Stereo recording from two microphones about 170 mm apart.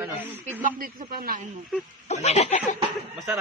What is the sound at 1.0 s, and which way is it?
Speech, 60° right (ahead or behind).